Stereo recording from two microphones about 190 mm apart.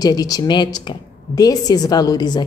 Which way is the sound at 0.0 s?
20° left (ahead or behind).